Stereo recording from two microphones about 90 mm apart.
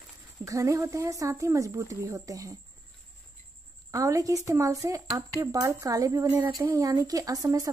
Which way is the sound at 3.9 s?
40° right (ahead or behind).